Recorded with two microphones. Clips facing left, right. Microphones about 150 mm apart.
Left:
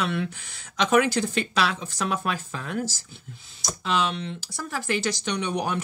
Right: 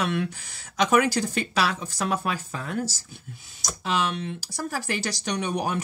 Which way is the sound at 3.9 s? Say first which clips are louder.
Left 1 dB; 45° right (ahead or behind).